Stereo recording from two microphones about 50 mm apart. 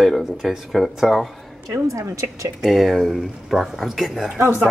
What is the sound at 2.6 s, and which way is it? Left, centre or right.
A woman's voice, centre.